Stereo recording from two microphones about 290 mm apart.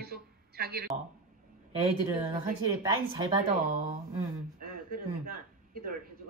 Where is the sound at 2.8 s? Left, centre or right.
Centre.